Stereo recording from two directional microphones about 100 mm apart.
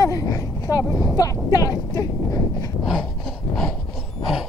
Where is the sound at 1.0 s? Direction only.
35° left (ahead or behind).